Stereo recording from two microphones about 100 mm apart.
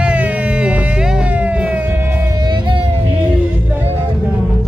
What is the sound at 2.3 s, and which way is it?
Music, 50° right (ahead or behind).